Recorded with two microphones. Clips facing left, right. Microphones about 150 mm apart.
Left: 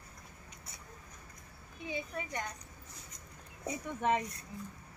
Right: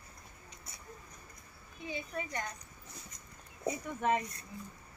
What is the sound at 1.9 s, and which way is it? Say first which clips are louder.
Speech: even; 10° left (ahead or behind).